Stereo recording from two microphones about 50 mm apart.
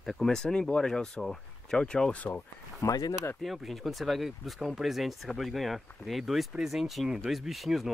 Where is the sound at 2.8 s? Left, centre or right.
Left.